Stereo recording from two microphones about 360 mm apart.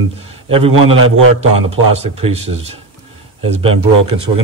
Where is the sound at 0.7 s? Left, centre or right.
Right.